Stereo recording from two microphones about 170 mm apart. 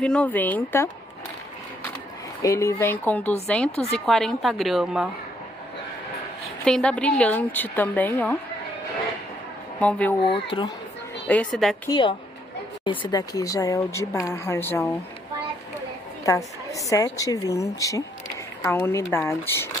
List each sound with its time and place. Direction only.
0.0 s a woman's voice: 5° left (ahead or behind)
2.4 s a woman's voice: 20° left (ahead or behind); by 5.0 s centre (ahead or behind)
6.6 s a woman's voice: 5° left (ahead or behind)
9.8 s a woman's voice: 10° left (ahead or behind)
10.5 s speech: 30° left (ahead or behind)
11.2 s a woman's voice: 5° left (ahead or behind)
11.9 s speech: 25° left (ahead or behind)
16.3 s a woman's voice: 20° left (ahead or behind)